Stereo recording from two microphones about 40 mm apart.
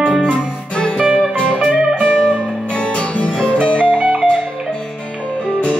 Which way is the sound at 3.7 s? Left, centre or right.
Right.